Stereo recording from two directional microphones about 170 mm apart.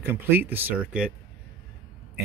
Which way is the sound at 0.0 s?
10° right (ahead or behind).